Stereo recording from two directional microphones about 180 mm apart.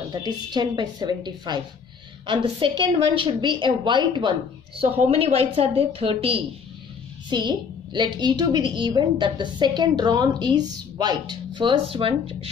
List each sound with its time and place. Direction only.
0.1 s a woman's voice: 25° right (ahead or behind)